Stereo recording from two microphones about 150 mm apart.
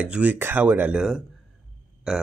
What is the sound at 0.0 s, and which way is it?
Speech, 10° right (ahead or behind).